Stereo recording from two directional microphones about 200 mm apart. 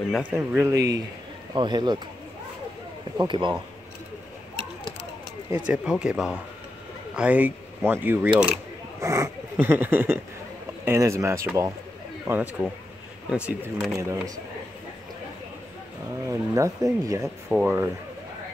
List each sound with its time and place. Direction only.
0.1 s speech: 5° right (ahead or behind)
3.2 s speech: 25° right (ahead or behind)
5.7 s speech: 5° right (ahead or behind)
13.9 s speech: 15° right (ahead or behind)
16.3 s speech: 15° right (ahead or behind)